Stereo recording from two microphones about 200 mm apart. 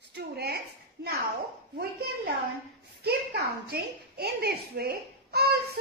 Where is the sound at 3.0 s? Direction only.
50° right (ahead or behind).